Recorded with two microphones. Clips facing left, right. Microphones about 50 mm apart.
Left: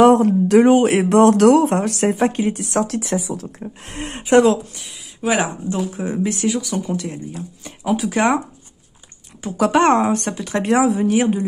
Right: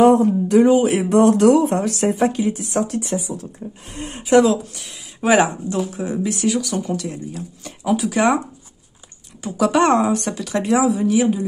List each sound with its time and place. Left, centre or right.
0.0 s speech: left
2.6 s speech: left
3.5 s speech: left
4.2 s speech: left
4.7 s speech: centre
5.7 s speech: left
6.4 s speech: centre
7.0 s speech: left
9.4 s speech: left